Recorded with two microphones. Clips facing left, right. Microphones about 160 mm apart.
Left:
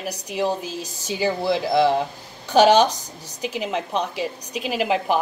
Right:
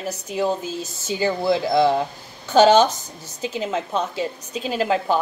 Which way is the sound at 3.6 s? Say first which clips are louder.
Right 1 dB; 15° left (ahead or behind).